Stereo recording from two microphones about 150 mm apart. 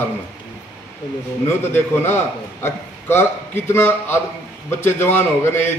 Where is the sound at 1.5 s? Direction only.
15° left (ahead or behind).